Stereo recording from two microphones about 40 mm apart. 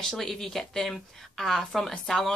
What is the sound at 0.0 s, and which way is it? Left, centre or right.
A woman's voice, centre.